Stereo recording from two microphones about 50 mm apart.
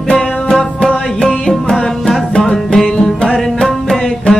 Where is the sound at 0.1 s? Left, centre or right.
Centre.